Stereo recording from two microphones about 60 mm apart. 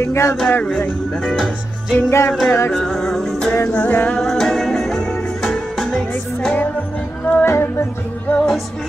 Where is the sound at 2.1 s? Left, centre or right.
Left.